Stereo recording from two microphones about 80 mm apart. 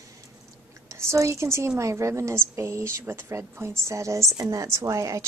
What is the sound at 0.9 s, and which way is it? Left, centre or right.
A woman's voice, right.